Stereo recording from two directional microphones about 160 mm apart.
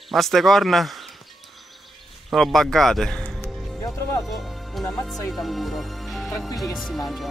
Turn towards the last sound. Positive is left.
turn(degrees=0)  # may be behind; listen again after turning